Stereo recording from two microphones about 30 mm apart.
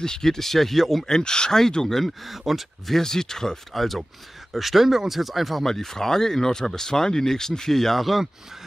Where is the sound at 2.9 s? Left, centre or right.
Centre.